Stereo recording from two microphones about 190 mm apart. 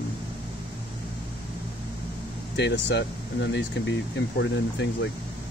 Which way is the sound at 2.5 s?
65° left (ahead or behind).